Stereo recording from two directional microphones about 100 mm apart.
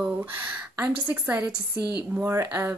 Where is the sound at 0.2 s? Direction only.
15° right (ahead or behind).